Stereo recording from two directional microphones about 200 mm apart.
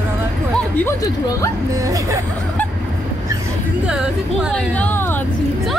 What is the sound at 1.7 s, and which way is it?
Speech, 15° right (ahead or behind).